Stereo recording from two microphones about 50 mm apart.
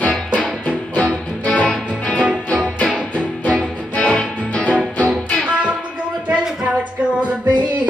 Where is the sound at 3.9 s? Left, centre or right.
Left.